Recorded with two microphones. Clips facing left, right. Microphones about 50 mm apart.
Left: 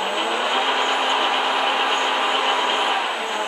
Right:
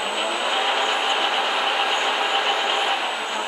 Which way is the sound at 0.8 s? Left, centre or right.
Left.